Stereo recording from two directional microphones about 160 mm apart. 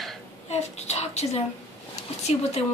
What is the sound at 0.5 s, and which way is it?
Speech, 45° left (ahead or behind).